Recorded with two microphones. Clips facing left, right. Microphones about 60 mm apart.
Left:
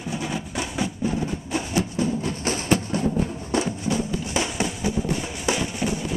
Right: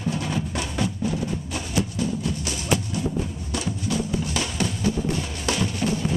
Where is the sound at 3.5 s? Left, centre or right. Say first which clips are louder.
Left 3 dB; left.